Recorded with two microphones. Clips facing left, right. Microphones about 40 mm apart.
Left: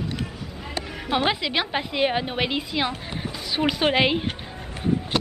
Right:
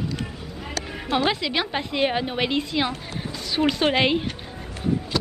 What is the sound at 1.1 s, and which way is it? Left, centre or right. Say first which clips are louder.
A woman's voice: even; centre.